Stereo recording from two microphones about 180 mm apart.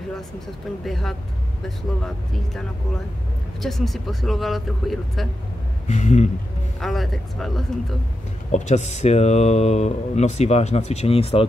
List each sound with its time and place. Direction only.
0.8 s speech: centre (ahead or behind)
3.6 s speech: centre (ahead or behind)
5.9 s speech: 40° left (ahead or behind)
6.8 s speech: centre (ahead or behind)
8.5 s speech: 40° left (ahead or behind)